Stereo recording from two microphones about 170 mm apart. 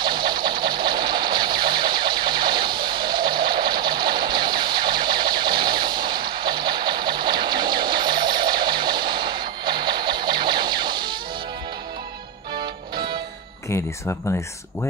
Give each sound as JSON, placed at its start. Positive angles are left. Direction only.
{"t": 0.0, "sound": "sewing machine", "side_deg": -25}
{"t": 12.5, "sound": "music", "side_deg": -25}
{"t": 13.7, "sound": "speech", "side_deg": 15}